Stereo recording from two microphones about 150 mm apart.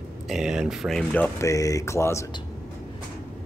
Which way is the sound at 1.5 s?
20° left (ahead or behind).